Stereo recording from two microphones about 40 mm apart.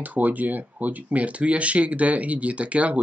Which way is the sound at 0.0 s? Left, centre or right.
Right.